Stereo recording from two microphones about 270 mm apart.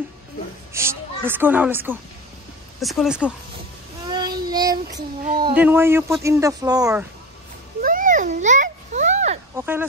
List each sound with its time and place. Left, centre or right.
0.7 s a child's voice: centre
4.1 s child singing: centre
5.5 s speech: centre
7.8 s a sound: right
9.6 s speech: centre